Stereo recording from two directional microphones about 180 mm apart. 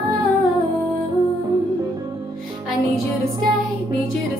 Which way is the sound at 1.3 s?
20° right (ahead or behind).